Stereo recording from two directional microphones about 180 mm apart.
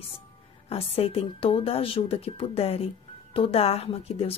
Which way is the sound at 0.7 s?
35° left (ahead or behind).